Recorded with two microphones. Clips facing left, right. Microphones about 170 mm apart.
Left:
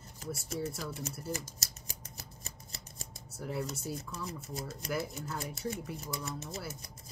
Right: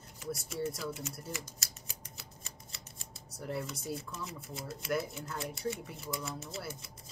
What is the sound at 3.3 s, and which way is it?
Speech, centre (ahead or behind).